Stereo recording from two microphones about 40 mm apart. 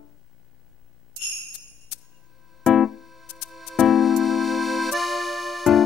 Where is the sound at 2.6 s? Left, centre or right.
Centre.